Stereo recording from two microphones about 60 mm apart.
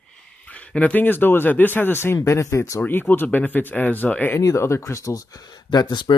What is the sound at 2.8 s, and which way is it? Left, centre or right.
Speech, left.